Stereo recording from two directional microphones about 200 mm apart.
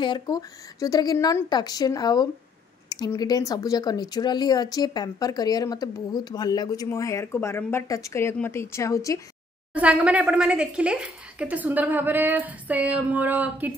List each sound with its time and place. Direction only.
0.0 s speech: 20° left (ahead or behind)
9.8 s speech: 5° right (ahead or behind)